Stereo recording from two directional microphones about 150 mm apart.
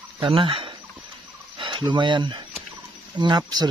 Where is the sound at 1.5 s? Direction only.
30° right (ahead or behind).